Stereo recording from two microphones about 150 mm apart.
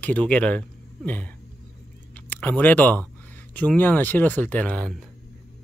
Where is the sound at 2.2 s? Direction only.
10° left (ahead or behind).